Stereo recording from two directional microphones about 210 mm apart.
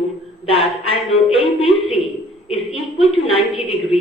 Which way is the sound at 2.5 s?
25° left (ahead or behind).